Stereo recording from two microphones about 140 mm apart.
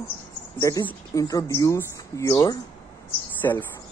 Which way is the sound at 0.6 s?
25° left (ahead or behind).